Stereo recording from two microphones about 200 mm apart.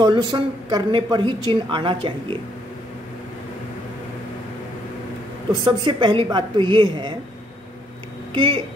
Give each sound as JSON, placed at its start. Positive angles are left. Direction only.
{"t": 0.0, "sound": "a woman's voice", "side_deg": -20}
{"t": 5.5, "sound": "a woman's voice", "side_deg": -25}
{"t": 8.3, "sound": "speech", "side_deg": -25}